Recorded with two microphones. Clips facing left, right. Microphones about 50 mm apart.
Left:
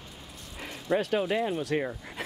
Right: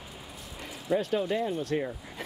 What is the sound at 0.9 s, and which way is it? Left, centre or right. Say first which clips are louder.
Speech: left 1 dB; centre.